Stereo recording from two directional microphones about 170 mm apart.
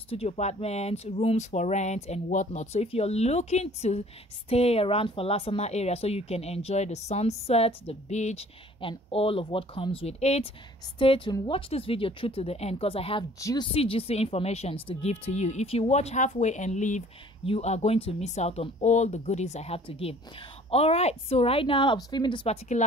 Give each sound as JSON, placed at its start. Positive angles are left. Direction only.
{"t": 0.1, "sound": "speech", "side_deg": 40}
{"t": 13.4, "sound": "speech", "side_deg": 20}
{"t": 13.7, "sound": "speech", "side_deg": 35}